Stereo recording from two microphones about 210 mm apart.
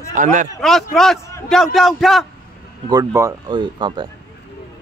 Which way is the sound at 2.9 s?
15° right (ahead or behind).